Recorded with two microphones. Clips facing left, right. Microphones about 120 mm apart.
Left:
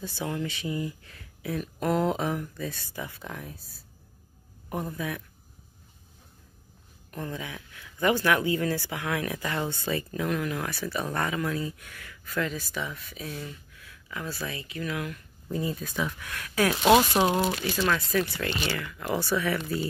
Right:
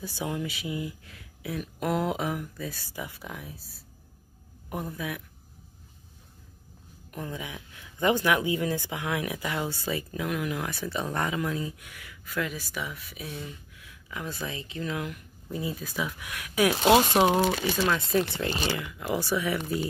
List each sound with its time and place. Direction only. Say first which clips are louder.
0.0 s speech: even; 15° right (ahead or behind)
7.1 s speech: left 1 dB; 10° right (ahead or behind)
15.5 s speech: left 2 dB; 5° right (ahead or behind)